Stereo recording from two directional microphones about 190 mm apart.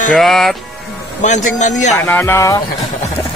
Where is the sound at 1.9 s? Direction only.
10° left (ahead or behind).